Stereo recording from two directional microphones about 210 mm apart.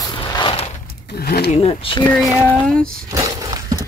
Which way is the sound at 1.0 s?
50° left (ahead or behind).